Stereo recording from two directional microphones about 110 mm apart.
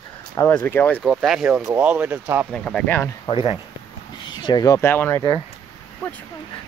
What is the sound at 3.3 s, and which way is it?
Speech, 50° left (ahead or behind).